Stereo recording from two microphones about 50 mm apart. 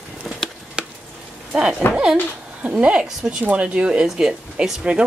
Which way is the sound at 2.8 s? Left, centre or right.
Right.